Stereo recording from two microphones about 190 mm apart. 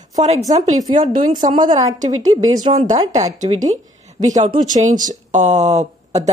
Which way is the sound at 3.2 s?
40° right (ahead or behind).